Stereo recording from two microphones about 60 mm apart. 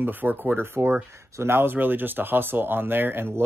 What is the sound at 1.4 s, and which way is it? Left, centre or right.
Speech, right.